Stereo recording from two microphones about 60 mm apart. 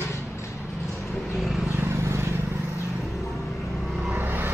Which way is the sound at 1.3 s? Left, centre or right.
Centre.